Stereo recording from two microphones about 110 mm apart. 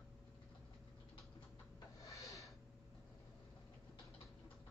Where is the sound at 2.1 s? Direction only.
30° left (ahead or behind).